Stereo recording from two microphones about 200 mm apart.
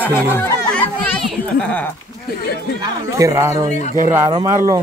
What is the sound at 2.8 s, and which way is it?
Speech, 15° right (ahead or behind).